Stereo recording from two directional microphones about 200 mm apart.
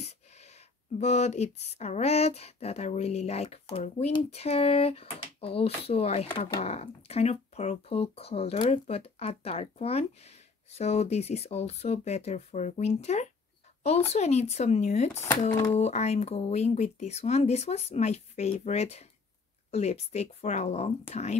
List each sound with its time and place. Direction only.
0.0 s speech: 35° left (ahead or behind)